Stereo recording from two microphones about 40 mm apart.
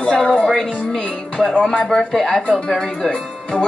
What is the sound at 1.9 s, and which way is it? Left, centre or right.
Speech, centre.